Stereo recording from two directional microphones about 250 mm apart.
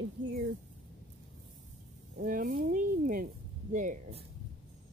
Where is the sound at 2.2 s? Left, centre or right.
Right.